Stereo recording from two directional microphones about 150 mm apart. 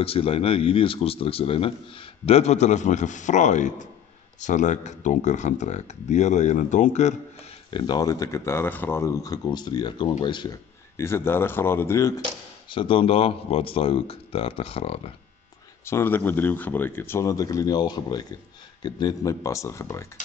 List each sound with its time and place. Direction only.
0.0 s a man's voice: 40° left (ahead or behind)
7.7 s speech: 30° left (ahead or behind)
11.0 s speech: 15° left (ahead or behind)
12.6 s a man's voice: 35° left (ahead or behind)
15.8 s speech: 15° left (ahead or behind)